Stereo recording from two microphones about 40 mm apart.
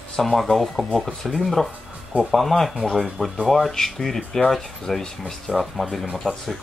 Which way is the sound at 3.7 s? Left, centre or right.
Centre.